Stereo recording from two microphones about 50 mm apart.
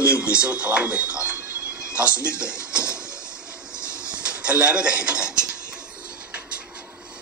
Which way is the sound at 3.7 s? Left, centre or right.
Right.